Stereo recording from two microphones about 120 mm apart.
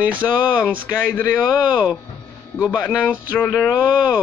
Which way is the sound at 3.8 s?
15° right (ahead or behind).